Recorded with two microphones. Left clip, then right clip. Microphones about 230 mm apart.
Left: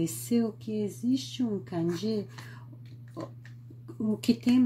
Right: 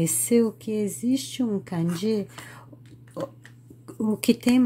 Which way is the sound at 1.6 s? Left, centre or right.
Right.